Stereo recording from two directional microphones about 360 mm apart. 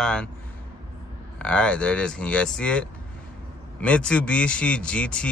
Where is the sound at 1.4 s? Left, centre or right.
Centre.